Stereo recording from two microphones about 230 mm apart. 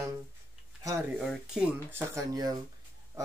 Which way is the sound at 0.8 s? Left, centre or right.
Centre.